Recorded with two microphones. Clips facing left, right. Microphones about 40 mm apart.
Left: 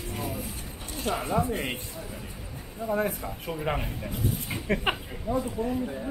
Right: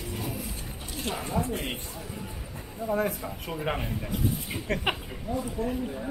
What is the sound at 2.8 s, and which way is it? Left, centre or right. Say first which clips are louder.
Speech: even; centre.